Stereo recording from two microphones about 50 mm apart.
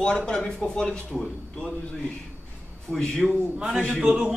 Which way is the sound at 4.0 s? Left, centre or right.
Centre.